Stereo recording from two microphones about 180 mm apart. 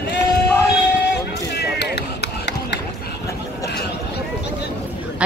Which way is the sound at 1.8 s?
70° left (ahead or behind).